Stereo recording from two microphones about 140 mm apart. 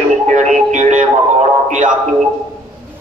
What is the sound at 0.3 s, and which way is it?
Music, 55° right (ahead or behind).